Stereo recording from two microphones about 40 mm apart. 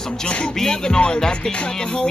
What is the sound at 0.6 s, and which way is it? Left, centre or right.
Speech, centre.